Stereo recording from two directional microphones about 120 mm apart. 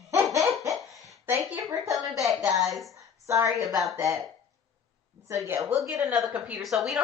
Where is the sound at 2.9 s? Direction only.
25° right (ahead or behind).